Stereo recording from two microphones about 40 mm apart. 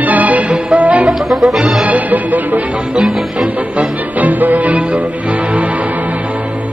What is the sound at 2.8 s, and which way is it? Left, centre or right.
Music, right.